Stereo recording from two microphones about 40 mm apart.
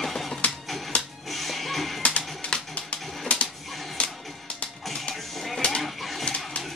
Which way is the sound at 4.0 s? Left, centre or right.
Left.